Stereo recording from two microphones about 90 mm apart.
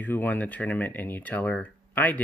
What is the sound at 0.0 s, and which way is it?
Speech, 20° left (ahead or behind).